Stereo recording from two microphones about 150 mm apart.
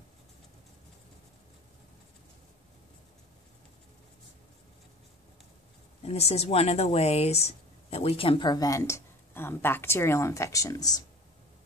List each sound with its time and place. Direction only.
6.0 s speech: 45° left (ahead or behind); by 11.0 s 25° left (ahead or behind)